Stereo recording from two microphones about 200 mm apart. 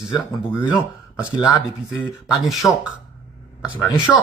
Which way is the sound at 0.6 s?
15° left (ahead or behind).